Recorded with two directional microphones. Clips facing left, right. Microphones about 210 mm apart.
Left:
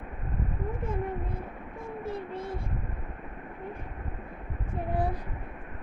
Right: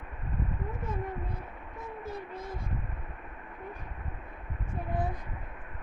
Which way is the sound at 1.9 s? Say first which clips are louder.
Left 4 dB; 30° left (ahead or behind).